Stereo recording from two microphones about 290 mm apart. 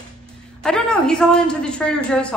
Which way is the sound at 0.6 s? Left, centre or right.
Centre.